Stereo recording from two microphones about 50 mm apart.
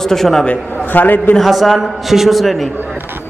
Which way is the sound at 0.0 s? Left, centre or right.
Centre.